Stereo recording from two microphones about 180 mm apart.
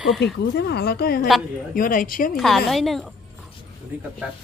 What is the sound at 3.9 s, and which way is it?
Speech, 10° right (ahead or behind).